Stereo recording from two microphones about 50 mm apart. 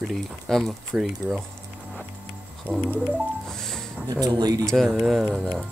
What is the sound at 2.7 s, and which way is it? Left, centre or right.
Music, right.